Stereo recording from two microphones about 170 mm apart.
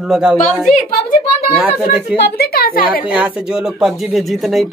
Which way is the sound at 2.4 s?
60° left (ahead or behind).